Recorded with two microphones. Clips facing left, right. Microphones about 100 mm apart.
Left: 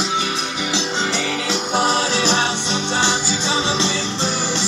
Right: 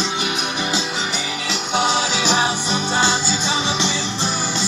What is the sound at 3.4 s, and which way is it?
Music, 30° left (ahead or behind).